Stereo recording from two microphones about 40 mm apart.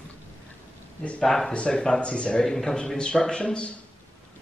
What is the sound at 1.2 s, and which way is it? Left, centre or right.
Speech, centre.